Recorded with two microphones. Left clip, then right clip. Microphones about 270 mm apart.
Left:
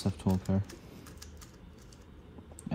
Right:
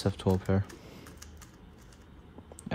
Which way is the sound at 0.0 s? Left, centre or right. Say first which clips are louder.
Right 5 dB; left.